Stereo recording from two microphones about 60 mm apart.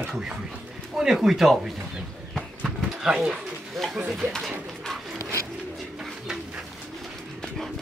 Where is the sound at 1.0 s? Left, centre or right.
Centre.